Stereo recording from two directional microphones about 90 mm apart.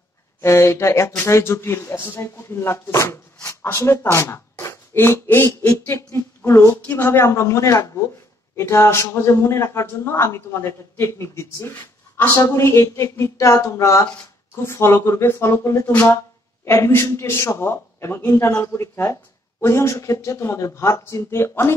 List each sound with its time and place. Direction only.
0.4 s a man's voice: 30° left (ahead or behind)